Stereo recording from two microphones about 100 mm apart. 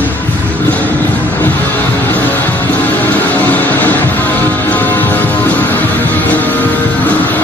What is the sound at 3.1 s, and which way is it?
Music, 15° left (ahead or behind).